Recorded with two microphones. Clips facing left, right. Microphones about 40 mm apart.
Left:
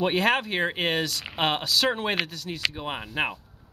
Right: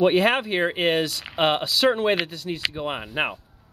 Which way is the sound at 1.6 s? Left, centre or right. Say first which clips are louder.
Right 4 dB; centre.